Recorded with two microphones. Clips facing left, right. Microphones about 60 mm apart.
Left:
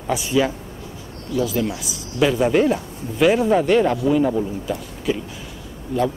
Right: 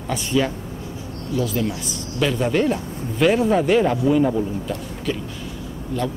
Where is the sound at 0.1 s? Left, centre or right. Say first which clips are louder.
Left 2 dB; centre.